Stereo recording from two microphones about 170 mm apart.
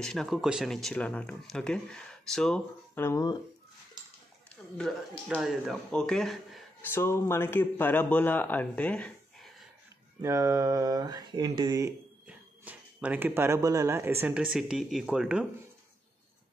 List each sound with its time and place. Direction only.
0.0 s speech: 5° left (ahead or behind)
2.9 s speech: 15° left (ahead or behind)
5.3 s speech: 5° right (ahead or behind)
6.9 s speech: 15° left (ahead or behind)
10.2 s speech: 15° right (ahead or behind)
12.3 s speech: 10° right (ahead or behind)